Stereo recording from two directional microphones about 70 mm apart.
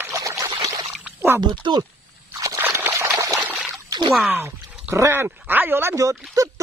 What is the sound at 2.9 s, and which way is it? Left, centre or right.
Pour, right.